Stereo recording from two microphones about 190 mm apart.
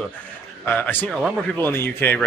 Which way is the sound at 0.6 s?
10° left (ahead or behind).